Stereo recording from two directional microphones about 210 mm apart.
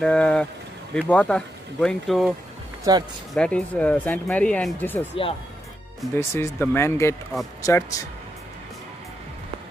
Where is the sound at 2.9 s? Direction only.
20° right (ahead or behind).